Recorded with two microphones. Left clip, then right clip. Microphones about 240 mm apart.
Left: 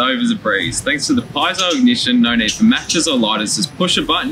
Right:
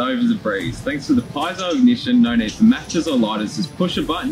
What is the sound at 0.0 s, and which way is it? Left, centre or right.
Speech, centre.